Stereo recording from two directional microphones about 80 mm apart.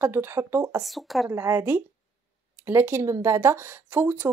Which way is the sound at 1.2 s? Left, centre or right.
Right.